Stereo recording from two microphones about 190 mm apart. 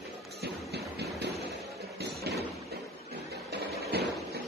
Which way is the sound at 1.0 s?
60° right (ahead or behind).